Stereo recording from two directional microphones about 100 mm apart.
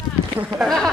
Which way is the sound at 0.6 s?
5° left (ahead or behind).